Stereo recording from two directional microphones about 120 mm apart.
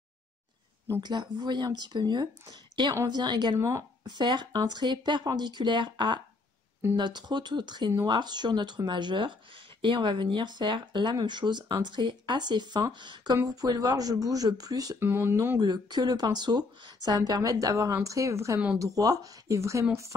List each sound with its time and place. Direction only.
1.0 s a woman's voice: 40° right (ahead or behind)
3.5 s speech: 25° right (ahead or behind)
15.0 s speech: 20° right (ahead or behind)
15.6 s speech: 35° right (ahead or behind)